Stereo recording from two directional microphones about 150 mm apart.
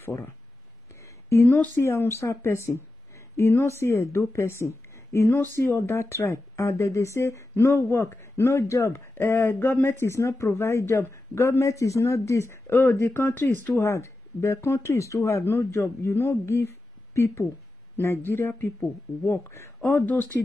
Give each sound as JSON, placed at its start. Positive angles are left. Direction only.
{"t": 0.0, "sound": "speech", "side_deg": 15}